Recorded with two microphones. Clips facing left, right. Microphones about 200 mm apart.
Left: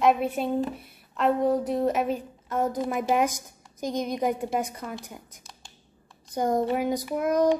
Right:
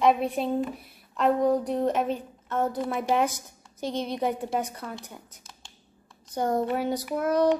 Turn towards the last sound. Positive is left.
turn(degrees=10)  # may be behind; listen again after turning